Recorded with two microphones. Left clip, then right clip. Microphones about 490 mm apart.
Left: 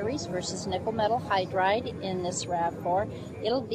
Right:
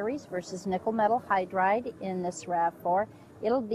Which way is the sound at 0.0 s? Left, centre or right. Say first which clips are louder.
Left 2 dB; right.